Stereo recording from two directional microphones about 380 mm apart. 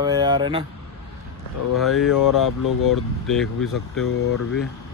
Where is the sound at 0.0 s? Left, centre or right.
Centre.